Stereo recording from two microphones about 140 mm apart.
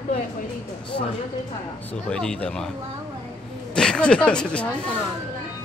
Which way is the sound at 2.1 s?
5° left (ahead or behind).